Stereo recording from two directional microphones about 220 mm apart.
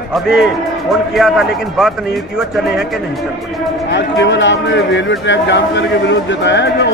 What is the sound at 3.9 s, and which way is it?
A man's voice, 55° left (ahead or behind).